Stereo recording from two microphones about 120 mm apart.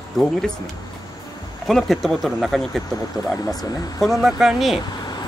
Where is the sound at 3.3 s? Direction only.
30° left (ahead or behind).